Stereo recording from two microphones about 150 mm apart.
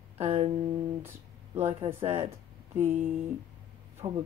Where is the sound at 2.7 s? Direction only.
15° right (ahead or behind).